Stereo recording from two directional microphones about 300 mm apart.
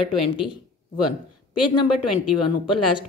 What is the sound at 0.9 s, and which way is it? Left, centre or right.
Speech, left.